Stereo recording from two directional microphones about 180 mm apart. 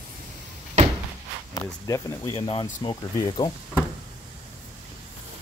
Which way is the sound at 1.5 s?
15° left (ahead or behind).